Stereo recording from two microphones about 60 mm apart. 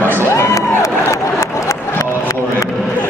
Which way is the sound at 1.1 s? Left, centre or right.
Left.